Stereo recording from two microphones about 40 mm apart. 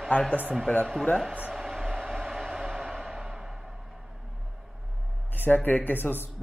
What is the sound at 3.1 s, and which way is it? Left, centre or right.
Music, centre.